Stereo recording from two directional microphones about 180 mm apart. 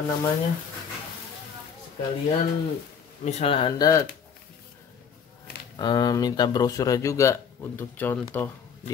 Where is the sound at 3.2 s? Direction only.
30° left (ahead or behind).